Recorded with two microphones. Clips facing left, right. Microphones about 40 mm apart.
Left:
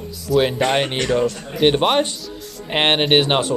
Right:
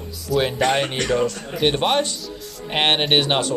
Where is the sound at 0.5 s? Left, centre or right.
Left.